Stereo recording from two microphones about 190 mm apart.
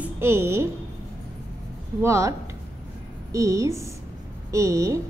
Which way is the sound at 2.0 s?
15° right (ahead or behind).